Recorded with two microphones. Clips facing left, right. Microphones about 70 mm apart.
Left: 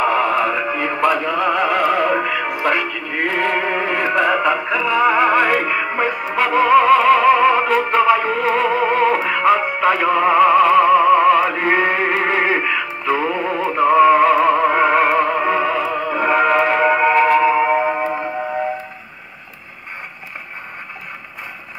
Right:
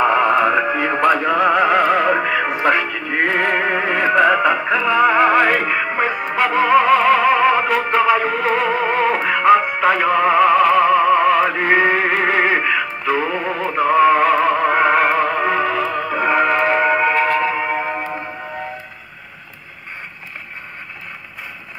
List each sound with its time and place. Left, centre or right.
0.3 s music: right
1.4 s music: centre
4.1 s music: centre